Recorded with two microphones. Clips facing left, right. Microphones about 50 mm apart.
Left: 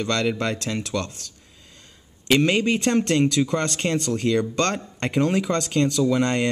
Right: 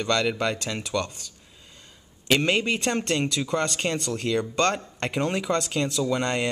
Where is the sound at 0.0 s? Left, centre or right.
Centre.